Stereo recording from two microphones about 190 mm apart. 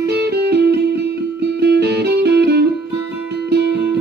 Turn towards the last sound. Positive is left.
turn(degrees=-60)  # may be behind; listen again after turning